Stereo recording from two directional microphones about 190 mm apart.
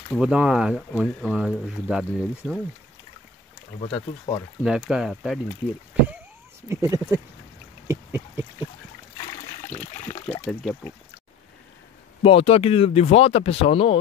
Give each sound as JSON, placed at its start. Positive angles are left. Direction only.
{"t": 0.1, "sound": "speech", "side_deg": -5}
{"t": 3.8, "sound": "speech", "side_deg": 25}
{"t": 4.6, "sound": "speech", "side_deg": -5}
{"t": 6.7, "sound": "speech", "side_deg": -15}
{"t": 7.9, "sound": "a sound", "side_deg": -10}
{"t": 9.6, "sound": "water", "side_deg": 40}
{"t": 10.4, "sound": "speech", "side_deg": 0}
{"t": 12.2, "sound": "speech", "side_deg": 30}